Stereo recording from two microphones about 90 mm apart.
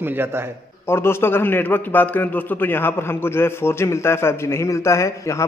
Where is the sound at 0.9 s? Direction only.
25° left (ahead or behind).